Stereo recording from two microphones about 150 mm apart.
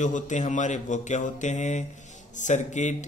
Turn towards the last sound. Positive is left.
turn(degrees=55)  # may be behind; listen again after turning